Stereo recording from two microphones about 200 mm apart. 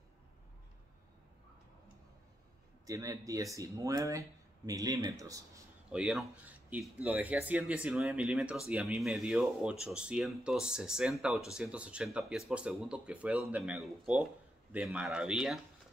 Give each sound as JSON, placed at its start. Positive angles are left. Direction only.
{"t": 2.9, "sound": "speech", "side_deg": -15}
{"t": 5.9, "sound": "speech", "side_deg": -5}